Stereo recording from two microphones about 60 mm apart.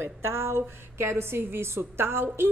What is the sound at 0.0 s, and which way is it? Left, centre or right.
A woman's voice, right.